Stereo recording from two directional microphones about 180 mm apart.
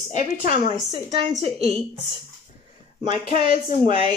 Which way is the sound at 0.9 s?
25° right (ahead or behind).